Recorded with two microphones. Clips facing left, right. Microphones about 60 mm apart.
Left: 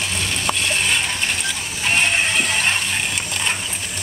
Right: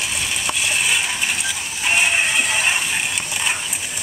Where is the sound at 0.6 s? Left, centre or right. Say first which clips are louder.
Right 2 dB; centre.